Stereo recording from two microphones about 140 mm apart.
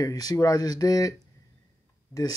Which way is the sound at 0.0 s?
25° left (ahead or behind).